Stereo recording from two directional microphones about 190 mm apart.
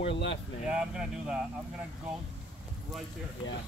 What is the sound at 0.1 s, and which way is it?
Speech, 70° left (ahead or behind).